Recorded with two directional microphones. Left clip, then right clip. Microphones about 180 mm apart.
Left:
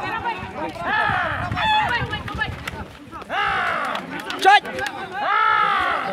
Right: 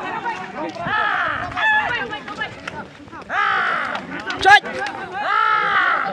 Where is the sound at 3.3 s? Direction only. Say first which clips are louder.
Right 3 dB; 20° right (ahead or behind).